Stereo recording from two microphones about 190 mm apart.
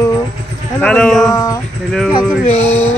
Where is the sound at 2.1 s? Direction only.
30° left (ahead or behind).